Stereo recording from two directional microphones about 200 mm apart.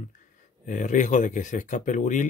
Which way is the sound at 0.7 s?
40° left (ahead or behind).